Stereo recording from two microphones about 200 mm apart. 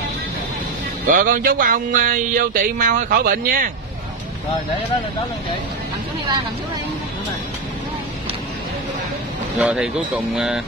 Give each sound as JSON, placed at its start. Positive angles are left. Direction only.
{"t": 1.0, "sound": "speech", "side_deg": -45}
{"t": 9.6, "sound": "speech", "side_deg": -5}